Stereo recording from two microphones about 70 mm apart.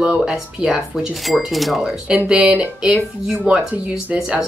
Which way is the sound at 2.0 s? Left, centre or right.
Centre.